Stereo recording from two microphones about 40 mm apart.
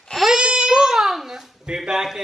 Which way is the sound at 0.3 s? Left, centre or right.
Right.